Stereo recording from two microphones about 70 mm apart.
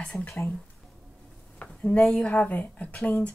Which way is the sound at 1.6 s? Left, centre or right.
Left.